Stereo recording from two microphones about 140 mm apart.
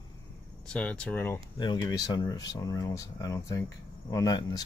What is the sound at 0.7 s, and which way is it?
Speech, 10° left (ahead or behind).